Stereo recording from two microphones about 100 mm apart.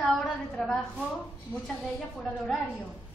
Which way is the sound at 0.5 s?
Centre (ahead or behind).